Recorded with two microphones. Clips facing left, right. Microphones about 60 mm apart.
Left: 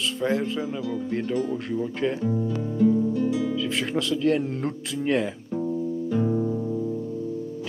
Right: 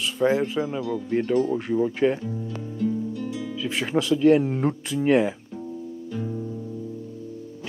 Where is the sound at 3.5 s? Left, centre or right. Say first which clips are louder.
Right 1 dB; centre.